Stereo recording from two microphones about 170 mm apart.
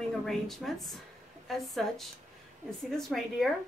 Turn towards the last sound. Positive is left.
turn(degrees=0)  # may be behind; listen again after turning